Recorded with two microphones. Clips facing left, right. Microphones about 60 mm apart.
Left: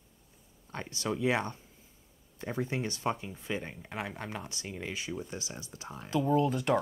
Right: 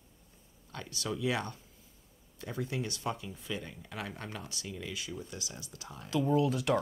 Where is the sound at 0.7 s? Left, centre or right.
Left.